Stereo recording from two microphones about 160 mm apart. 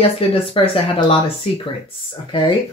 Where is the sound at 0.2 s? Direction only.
35° left (ahead or behind).